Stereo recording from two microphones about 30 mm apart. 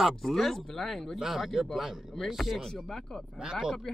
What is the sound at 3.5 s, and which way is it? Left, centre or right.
Speech, right.